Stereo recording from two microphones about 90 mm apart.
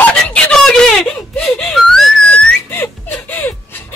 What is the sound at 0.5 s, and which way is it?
Wail, 5° left (ahead or behind).